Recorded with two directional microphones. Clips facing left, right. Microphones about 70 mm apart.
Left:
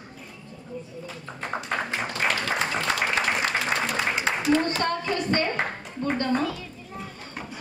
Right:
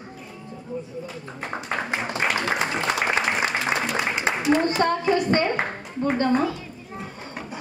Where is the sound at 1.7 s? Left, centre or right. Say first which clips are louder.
Right 3 dB; centre.